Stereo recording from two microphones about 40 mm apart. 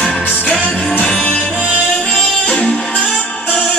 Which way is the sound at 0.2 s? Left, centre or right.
Right.